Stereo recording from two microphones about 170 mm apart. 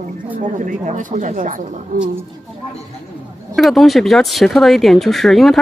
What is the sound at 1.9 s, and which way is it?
Speech, 55° right (ahead or behind).